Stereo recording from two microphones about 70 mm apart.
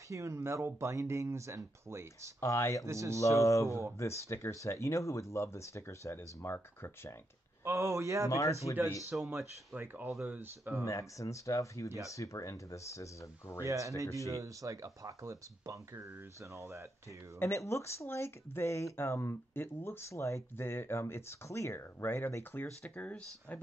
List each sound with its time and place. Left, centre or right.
0.1 s speech: right
2.4 s speech: left
2.9 s speech: right
3.2 s speech: left
7.6 s speech: right
8.3 s speech: left
9.1 s speech: right
10.9 s speech: left
13.7 s speech: right
17.4 s speech: left
22.9 s speech: centre